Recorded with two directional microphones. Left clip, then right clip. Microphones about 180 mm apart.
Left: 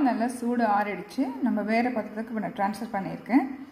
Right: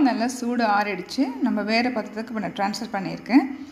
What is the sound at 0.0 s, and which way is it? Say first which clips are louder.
A woman's voice: right 4 dB; 5° right (ahead or behind).